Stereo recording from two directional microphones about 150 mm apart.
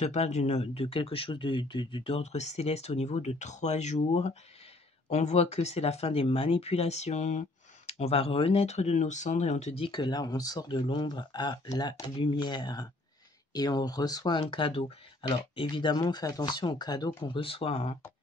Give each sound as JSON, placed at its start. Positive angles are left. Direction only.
{"t": 0.0, "sound": "speech", "side_deg": 50}